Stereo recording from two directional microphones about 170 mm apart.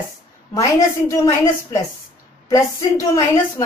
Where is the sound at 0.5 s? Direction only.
15° left (ahead or behind).